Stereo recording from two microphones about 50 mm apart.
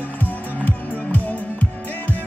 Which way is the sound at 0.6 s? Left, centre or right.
Left.